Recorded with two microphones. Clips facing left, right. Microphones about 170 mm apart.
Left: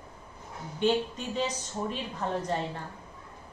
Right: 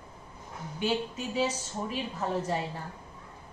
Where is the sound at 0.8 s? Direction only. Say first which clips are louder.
Left 4 dB; 5° right (ahead or behind).